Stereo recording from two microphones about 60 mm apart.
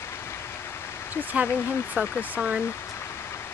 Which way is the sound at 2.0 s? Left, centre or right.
Right.